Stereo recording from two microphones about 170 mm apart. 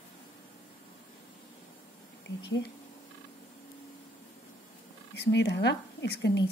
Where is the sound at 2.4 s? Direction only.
90° left.